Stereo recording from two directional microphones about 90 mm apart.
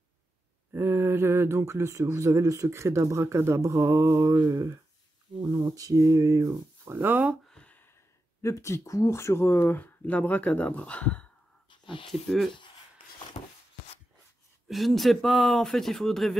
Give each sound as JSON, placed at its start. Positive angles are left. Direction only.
{"t": 0.7, "sound": "speech", "side_deg": -25}
{"t": 7.4, "sound": "a sound", "side_deg": 10}
{"t": 8.4, "sound": "speech", "side_deg": 35}
{"t": 11.8, "sound": "a sound", "side_deg": 65}
{"t": 12.1, "sound": "speech", "side_deg": 0}
{"t": 14.7, "sound": "speech", "side_deg": 0}